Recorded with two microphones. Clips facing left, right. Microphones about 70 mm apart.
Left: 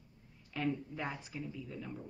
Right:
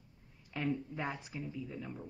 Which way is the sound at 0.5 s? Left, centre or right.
Centre.